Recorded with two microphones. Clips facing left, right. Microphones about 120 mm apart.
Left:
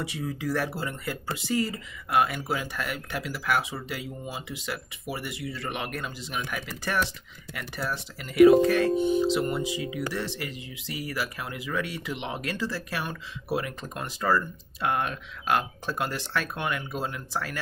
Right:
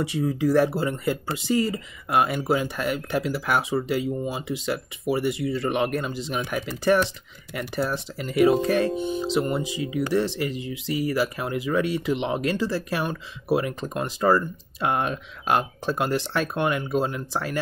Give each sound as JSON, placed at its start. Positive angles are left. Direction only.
{"t": 0.0, "sound": "speech", "side_deg": -25}